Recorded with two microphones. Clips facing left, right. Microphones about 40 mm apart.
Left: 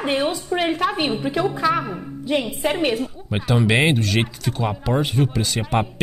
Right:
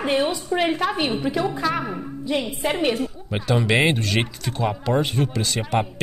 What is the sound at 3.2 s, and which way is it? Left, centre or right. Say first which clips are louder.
Speech: left 2 dB; centre.